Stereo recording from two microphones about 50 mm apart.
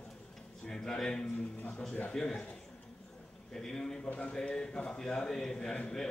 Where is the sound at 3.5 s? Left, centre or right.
Centre.